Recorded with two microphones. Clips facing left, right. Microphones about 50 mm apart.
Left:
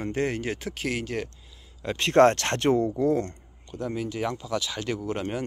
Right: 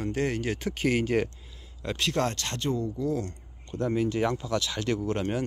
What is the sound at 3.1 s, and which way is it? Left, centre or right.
Speech, left.